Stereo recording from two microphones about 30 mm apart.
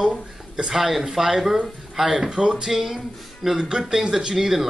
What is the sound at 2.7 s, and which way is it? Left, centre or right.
Speech, centre.